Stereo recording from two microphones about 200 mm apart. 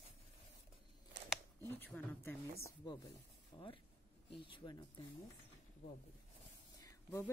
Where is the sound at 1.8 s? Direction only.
10° left (ahead or behind).